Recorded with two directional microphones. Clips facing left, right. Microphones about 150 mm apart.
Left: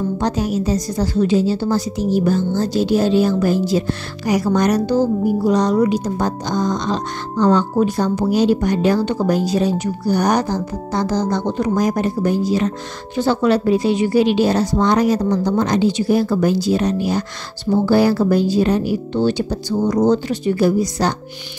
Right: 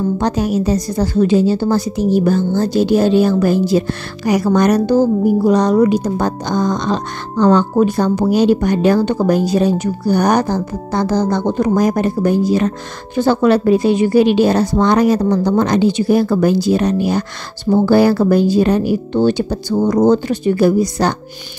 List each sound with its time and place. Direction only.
0.2 s speech: 60° right (ahead or behind)